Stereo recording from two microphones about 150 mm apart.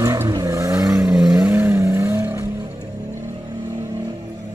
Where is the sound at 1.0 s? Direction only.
5° right (ahead or behind).